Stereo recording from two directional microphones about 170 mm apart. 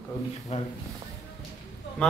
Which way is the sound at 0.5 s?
40° left (ahead or behind).